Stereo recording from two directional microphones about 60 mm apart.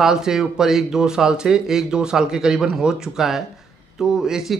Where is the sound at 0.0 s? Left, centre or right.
Centre.